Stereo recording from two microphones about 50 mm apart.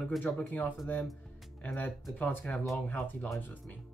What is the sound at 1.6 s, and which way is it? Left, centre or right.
Speech, left.